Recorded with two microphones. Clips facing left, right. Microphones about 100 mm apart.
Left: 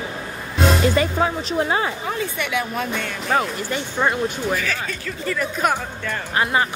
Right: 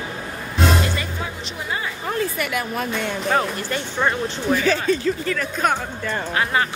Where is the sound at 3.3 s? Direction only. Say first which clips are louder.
Left 1 dB; 10° left (ahead or behind).